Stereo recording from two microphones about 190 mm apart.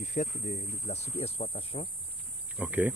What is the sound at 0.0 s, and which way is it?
Speech, 40° left (ahead or behind).